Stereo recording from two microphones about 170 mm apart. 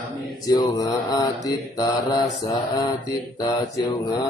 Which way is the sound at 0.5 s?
25° left (ahead or behind).